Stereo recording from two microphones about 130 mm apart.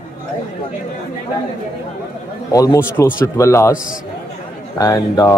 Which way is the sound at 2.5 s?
20° left (ahead or behind).